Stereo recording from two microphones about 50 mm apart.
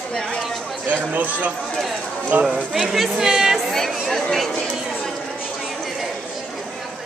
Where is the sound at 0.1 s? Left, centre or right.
Centre.